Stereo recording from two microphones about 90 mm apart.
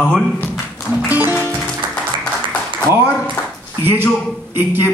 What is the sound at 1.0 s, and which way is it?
Music, 15° right (ahead or behind).